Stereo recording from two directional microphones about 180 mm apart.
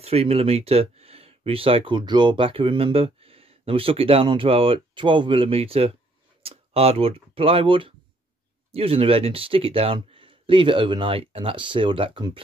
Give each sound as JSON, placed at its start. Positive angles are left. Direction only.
{"t": 0.0, "sound": "speech", "side_deg": -35}